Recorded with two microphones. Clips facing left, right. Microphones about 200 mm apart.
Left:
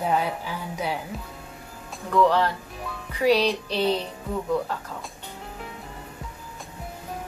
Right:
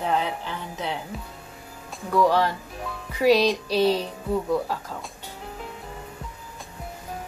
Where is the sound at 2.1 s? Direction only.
10° right (ahead or behind).